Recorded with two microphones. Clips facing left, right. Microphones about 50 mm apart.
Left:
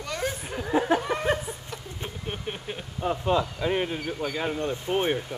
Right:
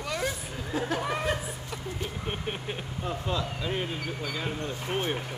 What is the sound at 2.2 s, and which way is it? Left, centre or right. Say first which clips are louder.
Vehicle: left 2 dB; centre.